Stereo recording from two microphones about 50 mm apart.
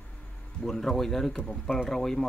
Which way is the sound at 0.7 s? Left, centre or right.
Centre.